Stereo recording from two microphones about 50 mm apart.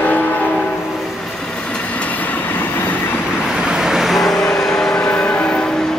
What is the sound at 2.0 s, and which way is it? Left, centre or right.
Train, left.